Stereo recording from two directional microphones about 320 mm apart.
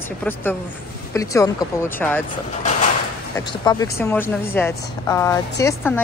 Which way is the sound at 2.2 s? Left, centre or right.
Left.